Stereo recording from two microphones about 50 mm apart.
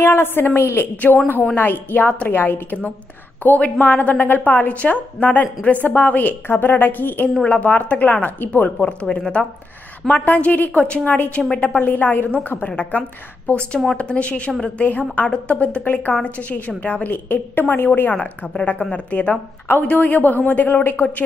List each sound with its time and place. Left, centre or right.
0.0 s a woman's voice: left
1.1 s speech: left
1.5 s a woman's voice: left
2.3 s a woman's voice: left
3.5 s a woman's voice: left
9.2 s speech: centre
10.0 s a woman's voice: left
13.9 s a woman's voice: left
15.2 s speech: left
15.5 s a woman's voice: left
18.7 s a woman's voice: left